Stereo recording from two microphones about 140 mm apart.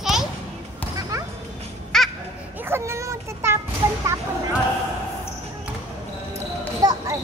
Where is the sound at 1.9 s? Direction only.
5° left (ahead or behind).